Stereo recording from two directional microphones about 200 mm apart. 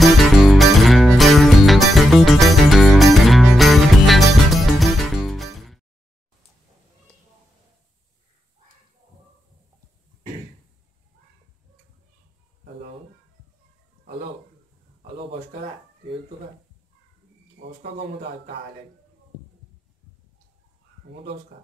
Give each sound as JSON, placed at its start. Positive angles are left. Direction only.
{"t": 0.0, "sound": "music", "side_deg": 0}
{"t": 17.6, "sound": "speech", "side_deg": -60}